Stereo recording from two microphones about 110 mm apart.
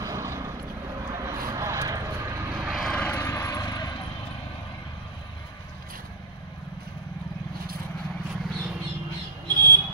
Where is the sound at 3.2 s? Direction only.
25° left (ahead or behind).